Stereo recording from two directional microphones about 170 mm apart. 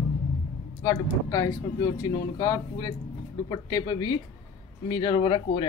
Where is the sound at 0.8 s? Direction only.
20° left (ahead or behind).